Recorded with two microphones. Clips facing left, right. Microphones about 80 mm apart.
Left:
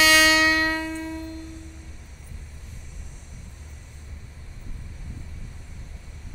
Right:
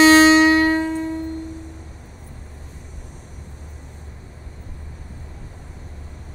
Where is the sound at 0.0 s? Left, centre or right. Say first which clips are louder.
Right 8 dB; right.